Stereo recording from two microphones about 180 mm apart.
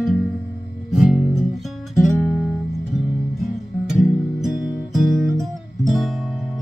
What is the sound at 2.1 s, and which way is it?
Guitar, 10° right (ahead or behind).